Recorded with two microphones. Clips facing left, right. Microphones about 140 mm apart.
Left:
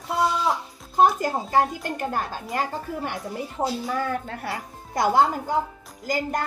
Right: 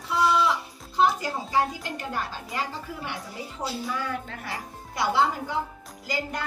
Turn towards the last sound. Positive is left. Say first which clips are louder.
# left 5 dB
turn(degrees=45)  # may be behind; listen again after turning